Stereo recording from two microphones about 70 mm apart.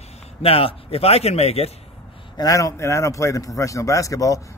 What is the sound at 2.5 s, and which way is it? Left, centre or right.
A man's voice, left.